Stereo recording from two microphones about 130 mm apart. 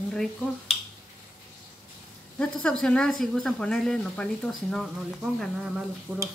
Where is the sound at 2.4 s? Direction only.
5° left (ahead or behind).